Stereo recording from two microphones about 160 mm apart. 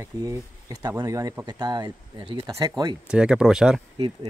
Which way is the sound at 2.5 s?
20° right (ahead or behind).